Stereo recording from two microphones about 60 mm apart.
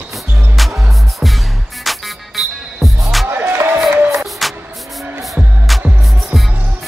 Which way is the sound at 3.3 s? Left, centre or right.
Right.